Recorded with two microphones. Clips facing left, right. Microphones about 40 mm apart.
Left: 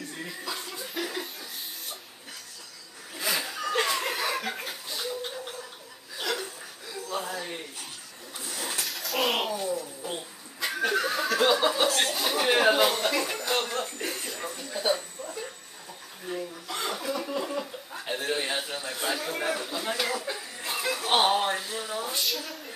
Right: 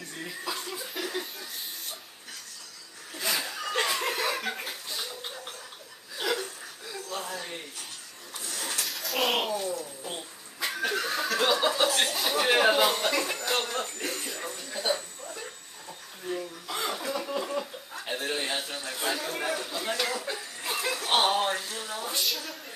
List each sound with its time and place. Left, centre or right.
0.2 s chuckle: centre
3.2 s laughter: centre
6.1 s chuckle: centre
8.4 s a sound: centre
16.3 s chuckle: centre